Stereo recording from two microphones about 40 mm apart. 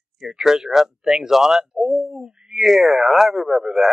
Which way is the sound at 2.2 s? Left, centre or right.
Centre.